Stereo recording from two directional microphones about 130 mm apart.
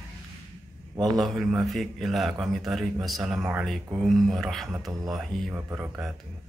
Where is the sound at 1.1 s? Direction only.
Centre (ahead or behind).